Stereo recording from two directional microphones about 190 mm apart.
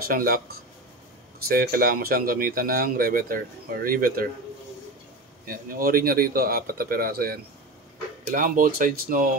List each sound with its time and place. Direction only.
0.0 s a man's voice: 50° right (ahead or behind)
5.5 s a man's voice: 50° right (ahead or behind)